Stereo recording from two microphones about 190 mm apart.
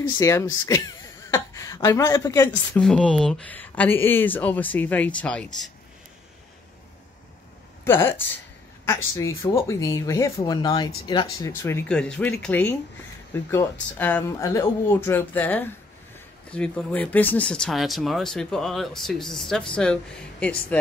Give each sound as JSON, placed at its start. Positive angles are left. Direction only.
{"t": 0.2, "sound": "speech", "side_deg": 15}
{"t": 2.8, "sound": "speech", "side_deg": 5}
{"t": 7.8, "sound": "speech", "side_deg": 10}